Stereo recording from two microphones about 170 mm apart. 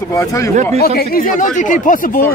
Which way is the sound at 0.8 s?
60° left (ahead or behind).